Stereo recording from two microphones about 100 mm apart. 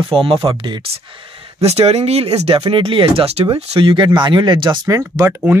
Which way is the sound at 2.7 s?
60° right (ahead or behind).